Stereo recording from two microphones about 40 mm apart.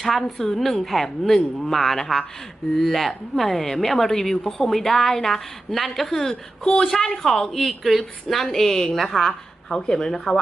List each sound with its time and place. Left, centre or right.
0.0 s a woman's voice: centre
6.6 s a man's voice: left
6.9 s speech: centre
9.7 s speech: centre